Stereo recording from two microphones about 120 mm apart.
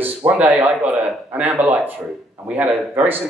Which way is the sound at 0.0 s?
15° right (ahead or behind).